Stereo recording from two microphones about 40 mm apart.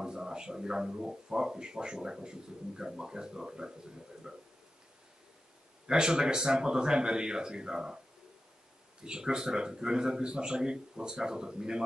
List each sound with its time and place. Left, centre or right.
0.0 s speech: centre
5.9 s speech: right
9.0 s speech: centre